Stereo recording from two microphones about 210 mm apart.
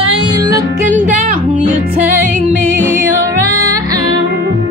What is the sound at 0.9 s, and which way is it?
Music, 35° right (ahead or behind).